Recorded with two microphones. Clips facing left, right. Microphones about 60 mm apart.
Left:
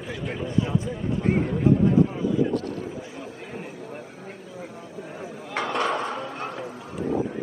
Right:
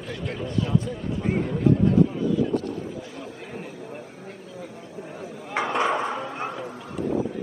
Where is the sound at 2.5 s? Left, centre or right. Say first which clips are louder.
Right 1 dB; left.